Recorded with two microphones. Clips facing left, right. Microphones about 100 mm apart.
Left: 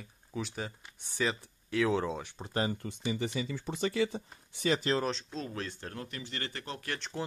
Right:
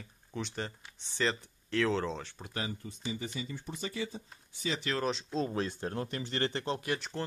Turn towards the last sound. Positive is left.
turn(degrees=-20)  # may be behind; listen again after turning